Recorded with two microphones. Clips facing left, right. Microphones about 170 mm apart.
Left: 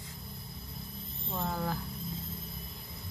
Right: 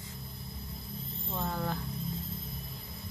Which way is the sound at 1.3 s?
5° left (ahead or behind).